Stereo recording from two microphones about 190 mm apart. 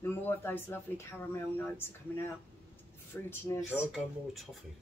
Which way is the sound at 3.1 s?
10° left (ahead or behind).